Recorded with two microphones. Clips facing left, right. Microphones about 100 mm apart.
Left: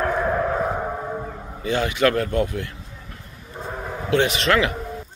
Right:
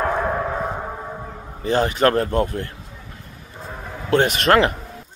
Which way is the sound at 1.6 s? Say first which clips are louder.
Right 2 dB; 40° right (ahead or behind).